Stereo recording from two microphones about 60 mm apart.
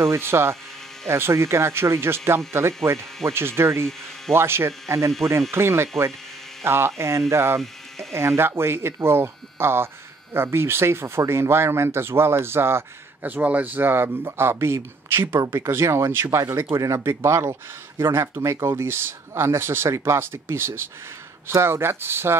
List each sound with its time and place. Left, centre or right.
0.0 s speech: right
13.2 s a man's voice: right
16.7 s speech: right